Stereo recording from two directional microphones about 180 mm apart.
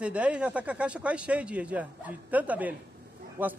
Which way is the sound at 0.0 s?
5° right (ahead or behind).